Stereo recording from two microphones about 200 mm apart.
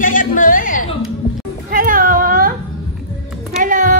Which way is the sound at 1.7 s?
45° right (ahead or behind).